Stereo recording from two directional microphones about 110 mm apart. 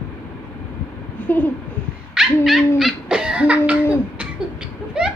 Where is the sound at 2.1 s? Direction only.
5° right (ahead or behind).